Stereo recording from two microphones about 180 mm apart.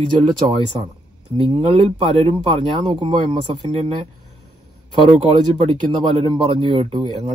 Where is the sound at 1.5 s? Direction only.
30° right (ahead or behind).